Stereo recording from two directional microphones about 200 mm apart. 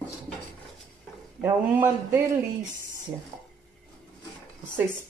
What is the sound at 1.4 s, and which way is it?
Speech, 10° right (ahead or behind).